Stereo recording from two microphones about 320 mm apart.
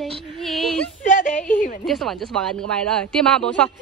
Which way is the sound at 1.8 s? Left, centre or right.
Centre.